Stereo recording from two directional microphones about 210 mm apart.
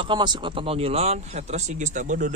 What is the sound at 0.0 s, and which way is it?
Speech, 20° right (ahead or behind).